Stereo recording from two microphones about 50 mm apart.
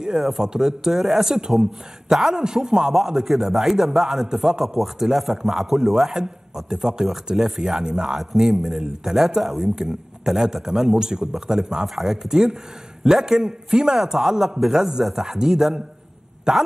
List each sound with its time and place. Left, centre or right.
0.0 s a man's voice: centre